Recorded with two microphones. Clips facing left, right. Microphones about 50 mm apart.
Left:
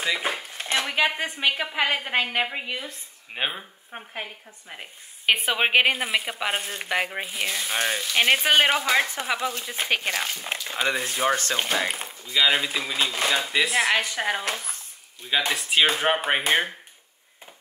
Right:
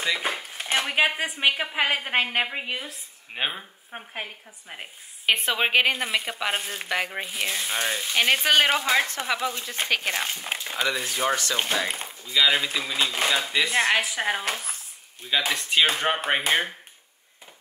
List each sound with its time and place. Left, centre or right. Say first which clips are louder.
0.0 s speech: even; centre
0.5 s a woman's voice: even; centre
5.2 s a woman's voice: left 1 dB; centre
7.7 s speech: left 3 dB; left
8.1 s a woman's voice: left 1 dB; centre
10.1 s a woman's voice: even; centre
11.2 s speech: left 2 dB; centre
11.5 s a woman's voice: left 1 dB; centre